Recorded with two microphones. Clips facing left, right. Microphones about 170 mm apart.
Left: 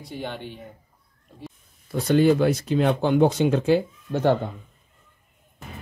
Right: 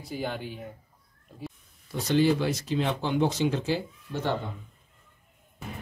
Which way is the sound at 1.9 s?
55° left (ahead or behind).